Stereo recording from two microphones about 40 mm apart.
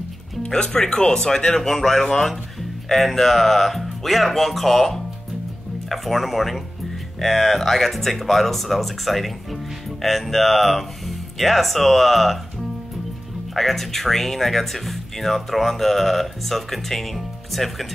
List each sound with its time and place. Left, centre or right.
0.4 s speech: centre
13.6 s speech: centre